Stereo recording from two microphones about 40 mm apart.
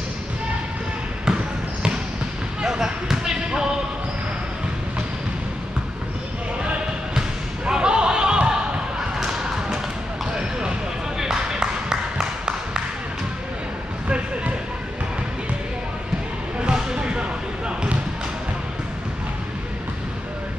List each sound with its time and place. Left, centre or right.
2.6 s basketball bounce: centre
7.6 s basketball bounce: right
11.1 s a sound: centre
14.0 s basketball bounce: right
16.5 s basketball bounce: right